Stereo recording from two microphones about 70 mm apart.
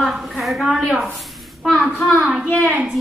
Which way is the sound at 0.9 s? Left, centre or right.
Centre.